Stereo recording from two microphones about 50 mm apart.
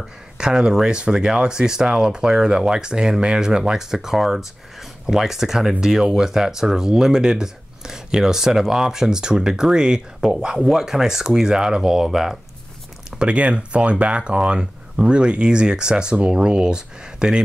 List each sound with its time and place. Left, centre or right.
0.4 s speech: centre
13.2 s speech: right